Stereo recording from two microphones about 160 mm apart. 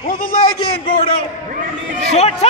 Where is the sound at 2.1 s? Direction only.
45° left (ahead or behind).